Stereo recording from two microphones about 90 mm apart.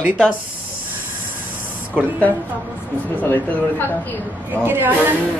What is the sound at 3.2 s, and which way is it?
Speech, 20° left (ahead or behind).